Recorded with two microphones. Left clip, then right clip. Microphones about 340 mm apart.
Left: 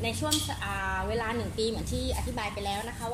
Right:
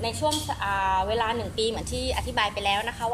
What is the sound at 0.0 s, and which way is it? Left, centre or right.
A woman's voice, right.